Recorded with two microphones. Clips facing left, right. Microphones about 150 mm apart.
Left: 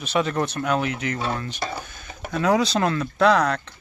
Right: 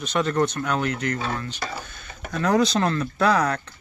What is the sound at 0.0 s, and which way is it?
Speech, 5° left (ahead or behind).